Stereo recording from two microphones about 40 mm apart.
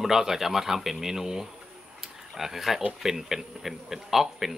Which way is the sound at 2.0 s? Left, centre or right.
Centre.